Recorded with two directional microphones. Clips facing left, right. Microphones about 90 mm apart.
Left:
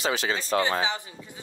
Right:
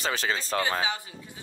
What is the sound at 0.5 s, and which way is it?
Speech, 30° left (ahead or behind).